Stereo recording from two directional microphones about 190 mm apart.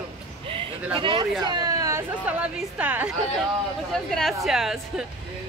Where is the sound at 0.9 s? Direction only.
25° right (ahead or behind).